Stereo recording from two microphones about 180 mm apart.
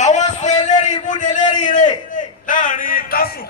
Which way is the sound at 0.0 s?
40° left (ahead or behind).